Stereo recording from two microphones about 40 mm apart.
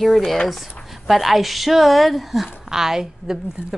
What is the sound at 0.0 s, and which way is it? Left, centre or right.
A woman's voice, centre.